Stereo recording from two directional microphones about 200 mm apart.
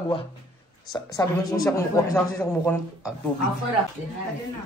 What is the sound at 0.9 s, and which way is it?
Speech, 20° left (ahead or behind).